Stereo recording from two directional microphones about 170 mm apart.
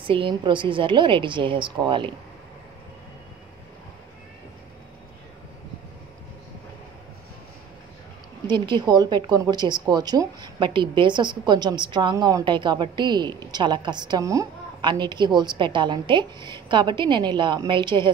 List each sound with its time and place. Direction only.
0.0 s a woman's voice: 30° right (ahead or behind)
8.5 s a woman's voice: 25° right (ahead or behind)